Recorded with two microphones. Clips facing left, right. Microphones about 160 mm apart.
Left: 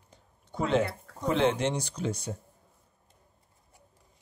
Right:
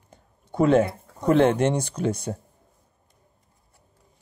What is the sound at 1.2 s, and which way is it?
Speech, 55° right (ahead or behind).